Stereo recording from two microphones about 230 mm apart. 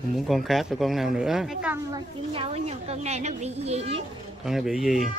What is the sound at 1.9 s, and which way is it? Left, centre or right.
A woman's voice, right.